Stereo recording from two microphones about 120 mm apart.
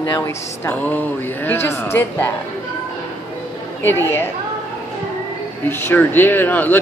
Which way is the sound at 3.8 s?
20° left (ahead or behind).